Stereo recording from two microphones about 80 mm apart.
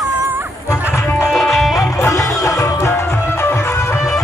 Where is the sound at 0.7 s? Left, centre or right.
Centre.